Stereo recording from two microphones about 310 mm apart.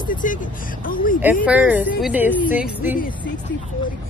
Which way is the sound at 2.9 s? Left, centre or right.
Left.